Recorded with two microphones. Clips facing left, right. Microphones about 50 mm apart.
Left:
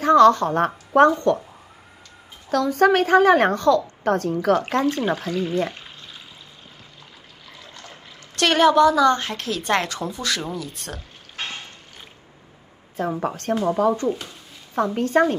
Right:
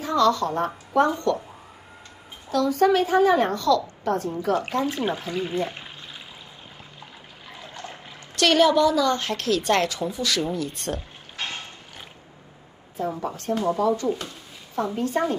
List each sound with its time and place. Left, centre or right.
0.0 s a woman's voice: left
2.5 s a woman's voice: left
4.8 s speech: centre
7.5 s trickle: right
8.4 s a woman's voice: left
9.2 s a woman's voice: centre
10.6 s speech: centre
13.0 s a woman's voice: left
13.7 s a woman's voice: left
14.8 s a woman's voice: left